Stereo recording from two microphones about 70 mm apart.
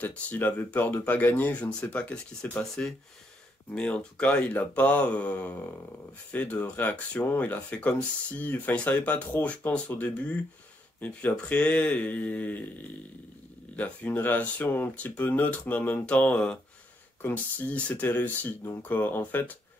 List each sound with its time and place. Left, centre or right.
0.0 s speech: left
13.7 s speech: left